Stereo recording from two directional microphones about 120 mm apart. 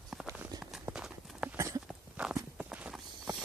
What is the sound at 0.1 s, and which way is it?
Walk, centre (ahead or behind).